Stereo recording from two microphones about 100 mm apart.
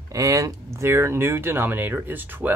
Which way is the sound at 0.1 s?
35° right (ahead or behind).